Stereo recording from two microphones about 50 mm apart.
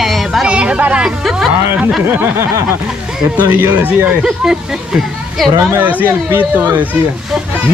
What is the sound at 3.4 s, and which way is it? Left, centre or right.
Speech, right.